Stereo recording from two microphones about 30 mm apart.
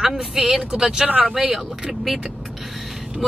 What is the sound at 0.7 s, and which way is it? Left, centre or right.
Speech, centre.